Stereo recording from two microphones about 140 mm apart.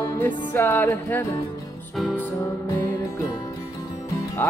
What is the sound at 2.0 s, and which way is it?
Music, 5° right (ahead or behind).